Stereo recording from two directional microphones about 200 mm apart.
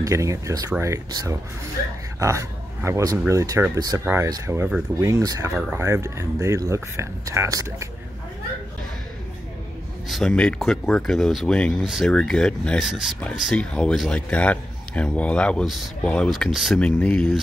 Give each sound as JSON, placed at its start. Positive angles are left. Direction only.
{"t": 0.0, "sound": "speech", "side_deg": -15}
{"t": 10.0, "sound": "speech", "side_deg": 0}